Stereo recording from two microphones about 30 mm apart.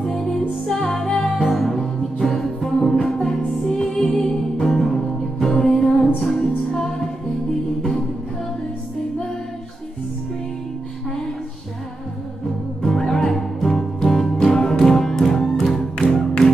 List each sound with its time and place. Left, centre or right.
0.0 s music: left
3.1 s music: centre
3.6 s music: centre
12.8 s music: centre